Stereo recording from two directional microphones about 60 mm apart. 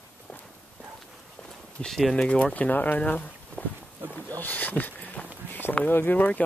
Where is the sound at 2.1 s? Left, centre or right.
Centre.